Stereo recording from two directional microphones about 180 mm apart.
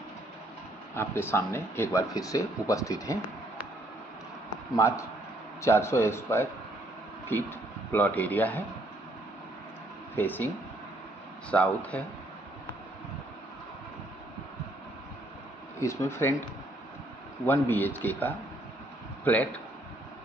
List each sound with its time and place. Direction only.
0.9 s speech: 15° left (ahead or behind)
4.7 s speech: 15° left (ahead or behind)
10.1 s speech: 10° left (ahead or behind)
11.5 s speech: 5° left (ahead or behind)
15.8 s speech: 15° left (ahead or behind)
17.5 s speech: 10° left (ahead or behind)